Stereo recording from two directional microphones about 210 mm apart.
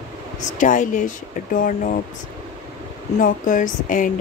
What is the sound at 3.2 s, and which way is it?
Speech, 40° left (ahead or behind).